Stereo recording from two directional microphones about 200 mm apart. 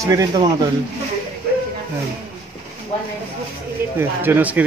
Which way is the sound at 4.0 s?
10° right (ahead or behind).